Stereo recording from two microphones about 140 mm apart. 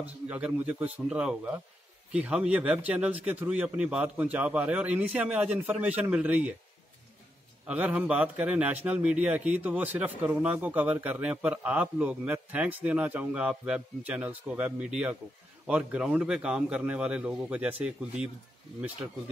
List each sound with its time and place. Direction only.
0.0 s a man's voice: 10° right (ahead or behind)
7.6 s a man's voice: 10° right (ahead or behind)